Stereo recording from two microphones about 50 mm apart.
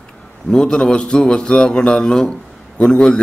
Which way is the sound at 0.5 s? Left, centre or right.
Centre.